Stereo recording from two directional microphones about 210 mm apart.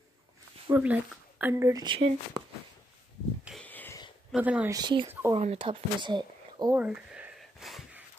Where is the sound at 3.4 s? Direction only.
5° left (ahead or behind).